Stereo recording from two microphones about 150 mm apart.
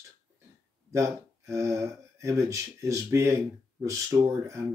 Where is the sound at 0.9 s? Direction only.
20° right (ahead or behind).